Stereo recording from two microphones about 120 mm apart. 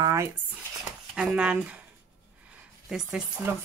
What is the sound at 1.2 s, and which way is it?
Speech, 5° right (ahead or behind).